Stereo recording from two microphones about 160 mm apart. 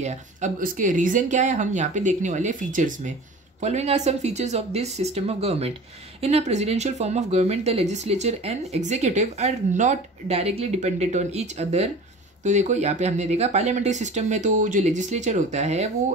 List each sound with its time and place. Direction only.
0.0 s speech: 45° right (ahead or behind)